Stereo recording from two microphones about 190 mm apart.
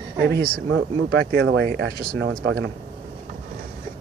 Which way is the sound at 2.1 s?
75° right (ahead or behind).